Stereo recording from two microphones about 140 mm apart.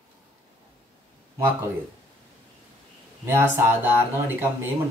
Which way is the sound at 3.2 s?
15° right (ahead or behind).